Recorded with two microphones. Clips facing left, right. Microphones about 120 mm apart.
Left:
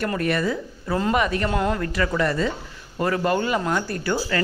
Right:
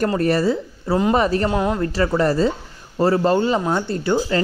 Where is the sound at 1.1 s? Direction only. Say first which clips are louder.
Right 4 dB; 35° right (ahead or behind).